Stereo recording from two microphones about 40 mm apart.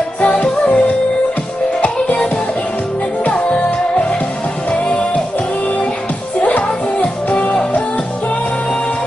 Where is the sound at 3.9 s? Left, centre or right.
Left.